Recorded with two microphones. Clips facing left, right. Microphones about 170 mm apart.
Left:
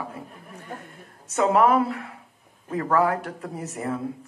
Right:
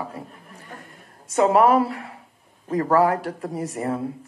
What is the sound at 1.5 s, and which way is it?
Speech, 35° right (ahead or behind).